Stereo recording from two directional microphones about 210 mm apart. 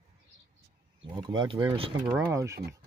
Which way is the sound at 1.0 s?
20° right (ahead or behind).